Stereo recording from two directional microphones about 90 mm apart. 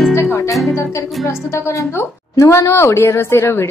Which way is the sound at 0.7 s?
30° left (ahead or behind).